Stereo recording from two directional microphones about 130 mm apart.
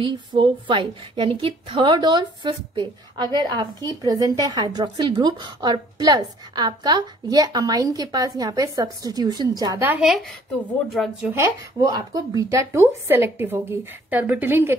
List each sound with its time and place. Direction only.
0.0 s a woman's voice: 35° right (ahead or behind)
9.8 s speech: 15° right (ahead or behind)
10.9 s speech: centre (ahead or behind)
11.3 s speech: 20° right (ahead or behind)